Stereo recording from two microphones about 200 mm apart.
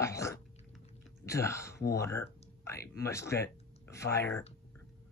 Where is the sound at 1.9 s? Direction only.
15° left (ahead or behind).